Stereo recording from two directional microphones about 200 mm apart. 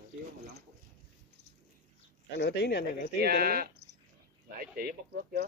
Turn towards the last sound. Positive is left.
turn(degrees=-45)  # may be behind; listen again after turning